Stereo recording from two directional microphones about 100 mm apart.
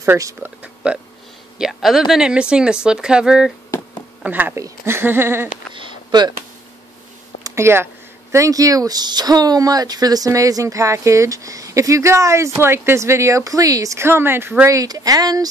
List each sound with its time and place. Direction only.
0.0 s speech: 30° right (ahead or behind)
0.4 s speech: 15° right (ahead or behind)
1.6 s speech: centre (ahead or behind)
4.6 s speech: 30° right (ahead or behind)
5.8 s a sound: 50° right (ahead or behind)
7.4 s speech: 25° right (ahead or behind)
14.8 s speech: 40° right (ahead or behind)